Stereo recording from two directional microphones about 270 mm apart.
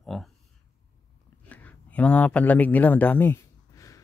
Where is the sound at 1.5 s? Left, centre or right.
Centre.